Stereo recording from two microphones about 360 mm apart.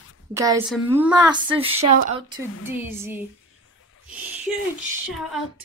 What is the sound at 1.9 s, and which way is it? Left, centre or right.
Speech, right.